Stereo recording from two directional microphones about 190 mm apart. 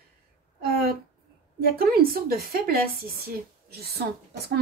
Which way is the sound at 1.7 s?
50° right (ahead or behind).